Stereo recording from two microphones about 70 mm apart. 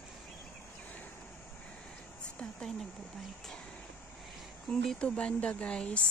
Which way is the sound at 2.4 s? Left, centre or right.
Centre.